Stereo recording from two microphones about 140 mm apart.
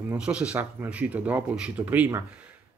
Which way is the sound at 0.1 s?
5° right (ahead or behind).